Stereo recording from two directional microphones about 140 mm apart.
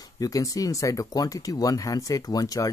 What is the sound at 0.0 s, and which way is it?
Speech, 25° left (ahead or behind).